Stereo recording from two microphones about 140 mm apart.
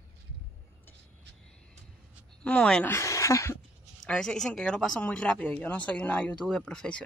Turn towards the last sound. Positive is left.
turn(degrees=5)  # may be behind; listen again after turning